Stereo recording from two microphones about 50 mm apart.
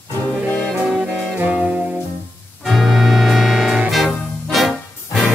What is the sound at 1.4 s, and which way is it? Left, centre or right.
Music, right.